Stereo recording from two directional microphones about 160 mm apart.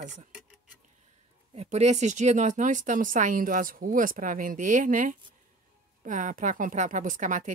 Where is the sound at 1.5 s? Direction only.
45° right (ahead or behind).